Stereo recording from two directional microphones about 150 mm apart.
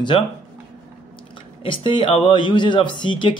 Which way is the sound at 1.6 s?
35° left (ahead or behind).